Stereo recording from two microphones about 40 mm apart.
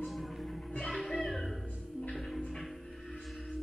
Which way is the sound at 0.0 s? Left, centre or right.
Centre.